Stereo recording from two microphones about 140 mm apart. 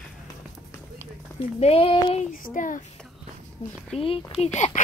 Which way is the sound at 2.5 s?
70° left (ahead or behind).